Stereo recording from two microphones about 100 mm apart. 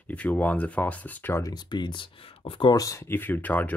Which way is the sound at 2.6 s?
35° left (ahead or behind).